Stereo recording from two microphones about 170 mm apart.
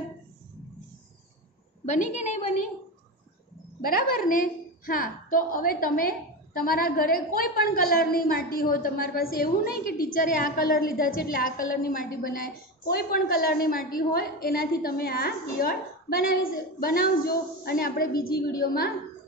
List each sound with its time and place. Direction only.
2.1 s a woman's voice: 40° left (ahead or behind)
4.2 s a woman's voice: 55° left (ahead or behind)